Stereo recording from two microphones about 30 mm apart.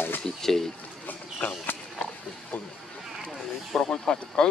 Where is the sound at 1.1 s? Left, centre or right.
Left.